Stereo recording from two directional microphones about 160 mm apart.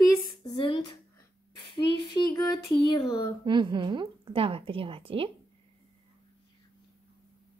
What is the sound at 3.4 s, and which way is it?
A woman's voice, 30° right (ahead or behind).